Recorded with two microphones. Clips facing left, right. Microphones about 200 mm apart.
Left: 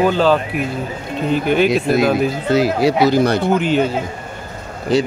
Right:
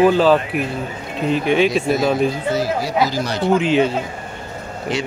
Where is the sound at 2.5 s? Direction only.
70° left (ahead or behind).